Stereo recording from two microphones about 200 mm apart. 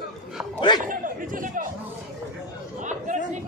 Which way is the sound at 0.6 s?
20° left (ahead or behind).